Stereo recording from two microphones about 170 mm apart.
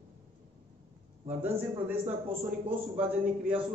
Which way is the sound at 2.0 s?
35° right (ahead or behind).